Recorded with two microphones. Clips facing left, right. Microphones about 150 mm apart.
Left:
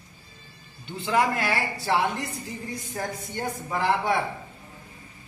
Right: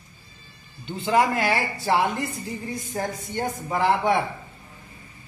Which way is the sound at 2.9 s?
25° right (ahead or behind).